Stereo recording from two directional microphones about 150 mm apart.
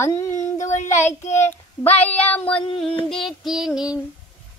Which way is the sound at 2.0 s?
10° left (ahead or behind).